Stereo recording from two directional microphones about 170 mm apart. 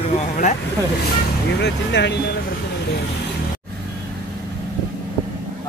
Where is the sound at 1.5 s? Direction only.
90° left.